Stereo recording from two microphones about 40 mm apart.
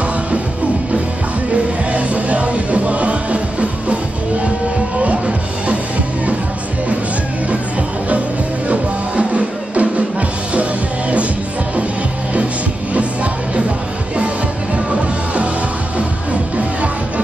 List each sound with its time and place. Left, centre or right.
1.5 s music: right
8.6 s music: right
12.9 s music: right
14.9 s music: right